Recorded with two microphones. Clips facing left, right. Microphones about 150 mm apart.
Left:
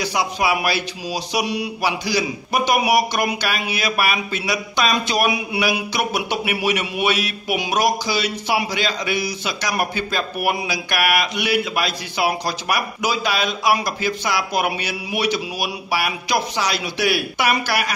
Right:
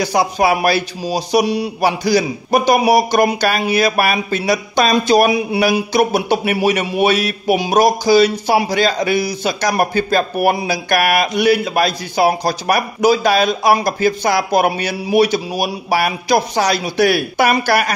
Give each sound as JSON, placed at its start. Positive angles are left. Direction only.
{"t": 0.0, "sound": "a man's voice", "side_deg": -45}